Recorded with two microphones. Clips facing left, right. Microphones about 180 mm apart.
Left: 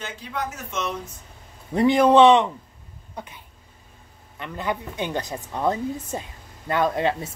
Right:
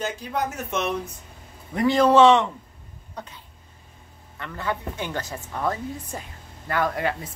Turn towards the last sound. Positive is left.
turn(degrees=25)  # may be behind; listen again after turning